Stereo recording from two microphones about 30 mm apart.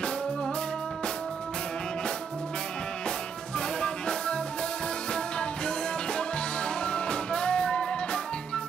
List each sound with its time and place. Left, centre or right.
3.5 s music: left
6.1 s music: left